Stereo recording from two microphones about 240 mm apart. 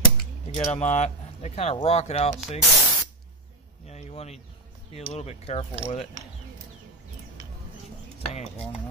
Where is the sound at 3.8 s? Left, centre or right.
Left.